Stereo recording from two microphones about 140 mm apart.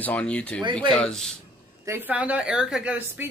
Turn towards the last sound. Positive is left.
turn(degrees=-15)  # may be behind; listen again after turning